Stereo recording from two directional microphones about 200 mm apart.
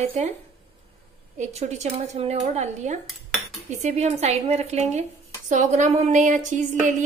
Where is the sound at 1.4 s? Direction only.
35° right (ahead or behind).